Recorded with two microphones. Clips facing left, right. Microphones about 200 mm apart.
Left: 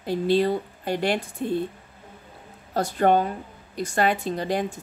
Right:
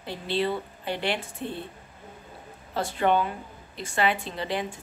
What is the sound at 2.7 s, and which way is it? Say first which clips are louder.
Speech: left 4 dB; 45° left (ahead or behind).